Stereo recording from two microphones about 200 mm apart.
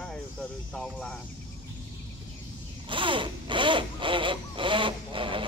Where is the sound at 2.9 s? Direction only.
25° right (ahead or behind).